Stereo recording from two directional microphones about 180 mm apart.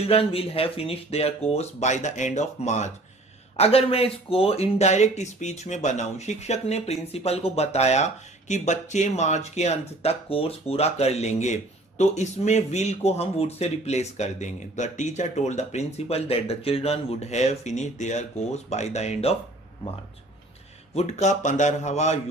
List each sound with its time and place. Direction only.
0.0 s speech: 35° left (ahead or behind)
20.9 s speech: 40° left (ahead or behind)